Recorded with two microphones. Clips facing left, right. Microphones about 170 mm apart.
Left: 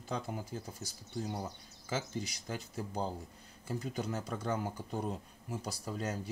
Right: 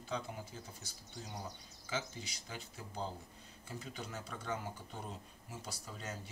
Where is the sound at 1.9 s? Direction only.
40° left (ahead or behind).